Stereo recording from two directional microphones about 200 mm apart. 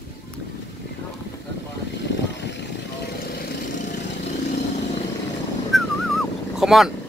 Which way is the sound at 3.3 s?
45° left (ahead or behind).